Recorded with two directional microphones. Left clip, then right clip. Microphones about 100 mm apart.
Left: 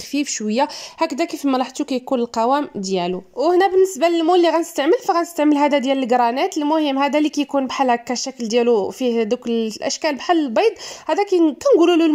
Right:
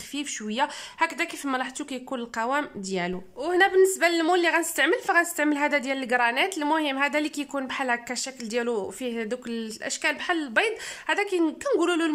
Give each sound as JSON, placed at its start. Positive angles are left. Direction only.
{"t": 0.1, "sound": "a woman's voice", "side_deg": 40}
{"t": 11.6, "sound": "a woman's voice", "side_deg": 30}